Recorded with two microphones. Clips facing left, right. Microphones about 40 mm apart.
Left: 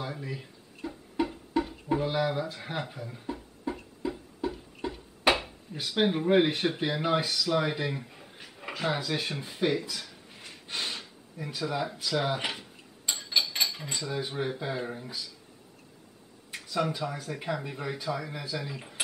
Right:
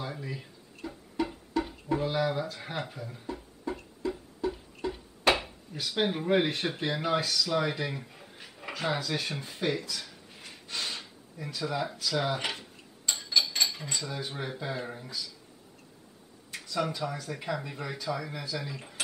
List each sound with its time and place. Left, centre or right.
0.0 s a sound: centre
1.2 s music: centre
1.9 s speech: centre
2.5 s a sound: centre
4.5 s a sound: centre
5.8 s speech: centre
10.7 s snort: centre
11.0 s speech: centre
12.0 s dishes: centre
13.8 s speech: centre
16.5 s speech: centre